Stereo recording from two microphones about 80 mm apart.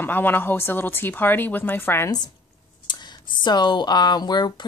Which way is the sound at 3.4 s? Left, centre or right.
Left.